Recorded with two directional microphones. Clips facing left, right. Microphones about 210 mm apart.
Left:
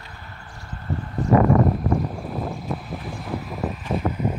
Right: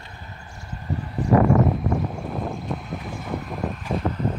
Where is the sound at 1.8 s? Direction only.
Centre (ahead or behind).